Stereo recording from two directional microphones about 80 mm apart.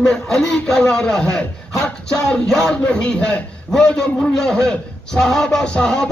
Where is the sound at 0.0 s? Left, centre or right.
Centre.